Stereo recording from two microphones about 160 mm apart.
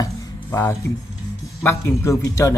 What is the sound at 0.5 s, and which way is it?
Speech, 20° left (ahead or behind).